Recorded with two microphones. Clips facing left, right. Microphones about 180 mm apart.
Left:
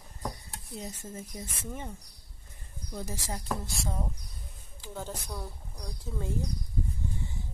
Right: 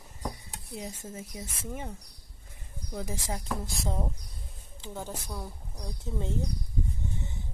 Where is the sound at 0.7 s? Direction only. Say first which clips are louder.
Right 1 dB; 10° right (ahead or behind).